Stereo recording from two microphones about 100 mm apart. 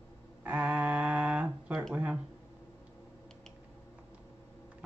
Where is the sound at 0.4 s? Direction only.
15° right (ahead or behind).